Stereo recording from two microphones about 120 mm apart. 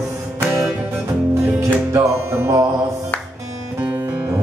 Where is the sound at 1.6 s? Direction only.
25° right (ahead or behind).